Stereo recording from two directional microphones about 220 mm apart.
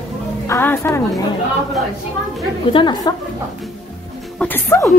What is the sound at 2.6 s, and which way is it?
Speech, 20° left (ahead or behind).